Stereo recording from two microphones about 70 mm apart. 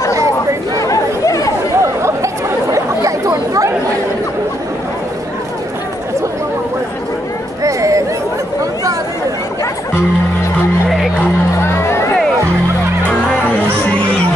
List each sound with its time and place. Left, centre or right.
0.7 s chatter: left
1.8 s chatter: right
7.6 s a sound: right
11.6 s music: left